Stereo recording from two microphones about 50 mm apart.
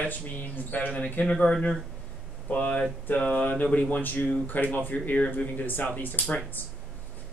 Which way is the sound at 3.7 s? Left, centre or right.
Left.